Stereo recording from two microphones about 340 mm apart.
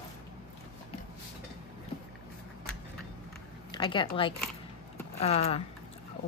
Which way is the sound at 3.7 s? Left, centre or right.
Centre.